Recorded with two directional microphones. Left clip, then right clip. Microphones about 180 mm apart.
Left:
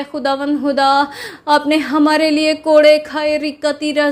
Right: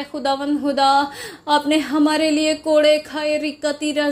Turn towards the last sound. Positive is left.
turn(degrees=20)  # may be behind; listen again after turning